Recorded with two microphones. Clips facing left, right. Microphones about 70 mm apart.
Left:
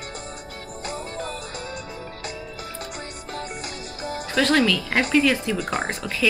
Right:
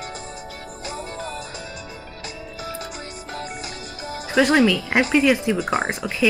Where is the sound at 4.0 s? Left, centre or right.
Left.